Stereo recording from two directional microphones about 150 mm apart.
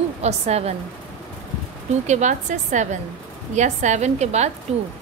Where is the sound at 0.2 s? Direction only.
45° right (ahead or behind).